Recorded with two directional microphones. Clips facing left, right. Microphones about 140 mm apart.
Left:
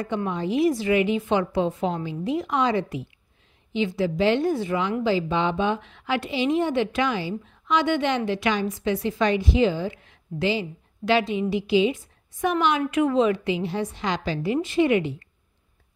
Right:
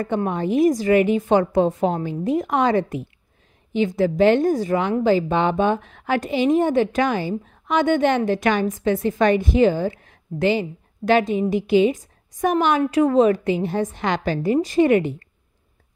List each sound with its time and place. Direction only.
0.0 s a woman's voice: 50° right (ahead or behind)